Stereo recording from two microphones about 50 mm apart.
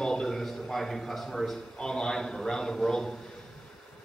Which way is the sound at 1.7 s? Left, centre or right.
Centre.